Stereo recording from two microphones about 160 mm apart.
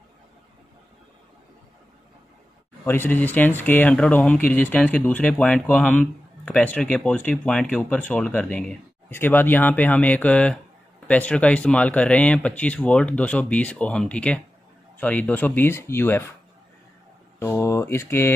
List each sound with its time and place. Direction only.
2.8 s speech: 15° left (ahead or behind)
17.4 s speech: 15° left (ahead or behind)